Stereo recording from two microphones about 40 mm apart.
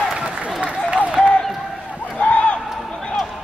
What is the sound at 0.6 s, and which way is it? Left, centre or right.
Applause, right.